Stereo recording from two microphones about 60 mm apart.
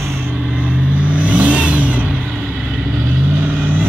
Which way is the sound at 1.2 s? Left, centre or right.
Right.